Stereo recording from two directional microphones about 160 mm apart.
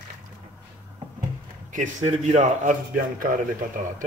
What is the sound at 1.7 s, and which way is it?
A man's voice, 50° right (ahead or behind).